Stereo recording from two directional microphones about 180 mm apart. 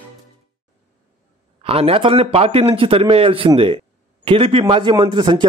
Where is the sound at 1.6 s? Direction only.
30° right (ahead or behind).